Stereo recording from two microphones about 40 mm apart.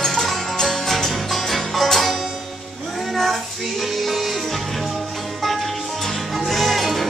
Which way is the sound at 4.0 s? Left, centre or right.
Centre.